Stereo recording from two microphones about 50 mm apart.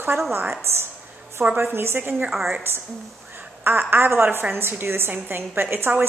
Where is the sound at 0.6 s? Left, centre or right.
Right.